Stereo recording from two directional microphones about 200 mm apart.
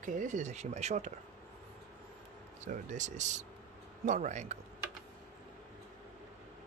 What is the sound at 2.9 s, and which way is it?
Speech, 35° right (ahead or behind).